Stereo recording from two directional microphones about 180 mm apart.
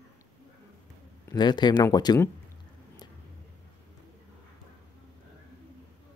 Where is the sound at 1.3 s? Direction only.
25° left (ahead or behind).